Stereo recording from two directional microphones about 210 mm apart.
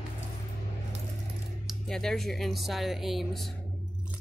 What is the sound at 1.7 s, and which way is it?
Speech, centre (ahead or behind).